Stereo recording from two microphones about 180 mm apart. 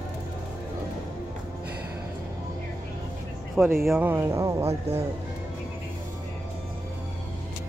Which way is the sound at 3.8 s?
5° right (ahead or behind).